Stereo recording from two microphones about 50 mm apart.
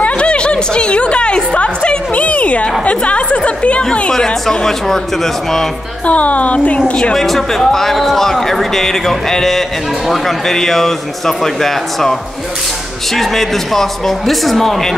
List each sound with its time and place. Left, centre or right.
0.0 s music: left
2.8 s speech: left
4.1 s speech: centre
6.0 s speech: left
7.2 s speech: centre